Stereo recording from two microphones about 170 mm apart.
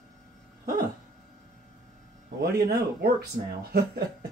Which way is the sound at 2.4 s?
65° right (ahead or behind).